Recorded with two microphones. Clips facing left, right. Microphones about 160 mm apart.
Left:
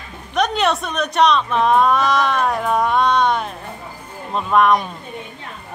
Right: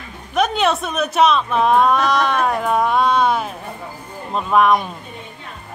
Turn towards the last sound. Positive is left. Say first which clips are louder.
# even
turn(degrees=0)  # may be behind; listen again after turning